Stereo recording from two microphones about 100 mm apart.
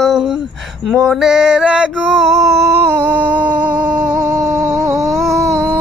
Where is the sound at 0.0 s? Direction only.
5° right (ahead or behind).